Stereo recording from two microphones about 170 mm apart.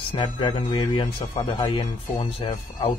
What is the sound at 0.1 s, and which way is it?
Speech, 30° left (ahead or behind).